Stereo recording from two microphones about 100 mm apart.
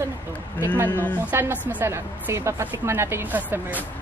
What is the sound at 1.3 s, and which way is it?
A woman's voice, 25° right (ahead or behind).